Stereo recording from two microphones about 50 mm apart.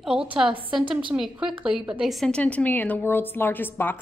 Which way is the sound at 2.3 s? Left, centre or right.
Left.